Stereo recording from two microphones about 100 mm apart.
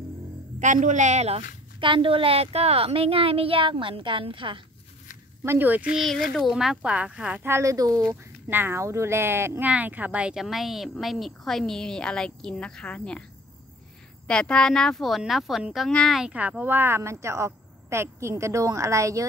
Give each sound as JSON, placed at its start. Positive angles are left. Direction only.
{"t": 1.2, "sound": "speech", "side_deg": -75}
{"t": 5.4, "sound": "speech", "side_deg": -25}
{"t": 5.9, "sound": "a child's voice", "side_deg": 0}
{"t": 7.4, "sound": "a woman's voice", "side_deg": -30}
{"t": 8.1, "sound": "speech", "side_deg": -20}
{"t": 14.2, "sound": "speech", "side_deg": 10}
{"t": 16.2, "sound": "speech", "side_deg": -15}